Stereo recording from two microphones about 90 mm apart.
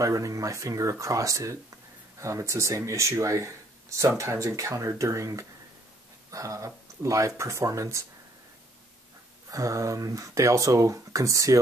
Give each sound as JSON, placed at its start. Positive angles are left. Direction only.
{"t": 0.0, "sound": "speech", "side_deg": -40}
{"t": 9.5, "sound": "speech", "side_deg": -35}